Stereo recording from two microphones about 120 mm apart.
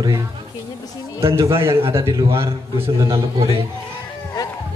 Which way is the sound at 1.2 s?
25° right (ahead or behind).